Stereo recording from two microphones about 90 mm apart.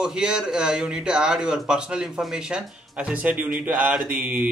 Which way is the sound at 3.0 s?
15° right (ahead or behind).